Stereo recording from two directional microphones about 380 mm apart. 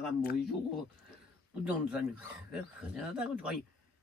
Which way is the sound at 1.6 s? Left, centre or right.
Centre.